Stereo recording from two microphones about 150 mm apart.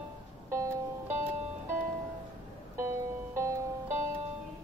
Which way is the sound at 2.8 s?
20° right (ahead or behind).